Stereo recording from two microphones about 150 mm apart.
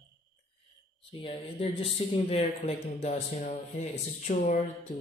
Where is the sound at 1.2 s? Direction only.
40° left (ahead or behind).